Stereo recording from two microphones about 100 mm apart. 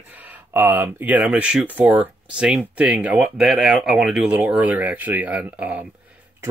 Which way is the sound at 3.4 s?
5° right (ahead or behind).